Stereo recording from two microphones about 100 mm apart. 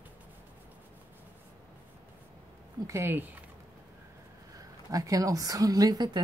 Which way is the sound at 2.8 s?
25° right (ahead or behind).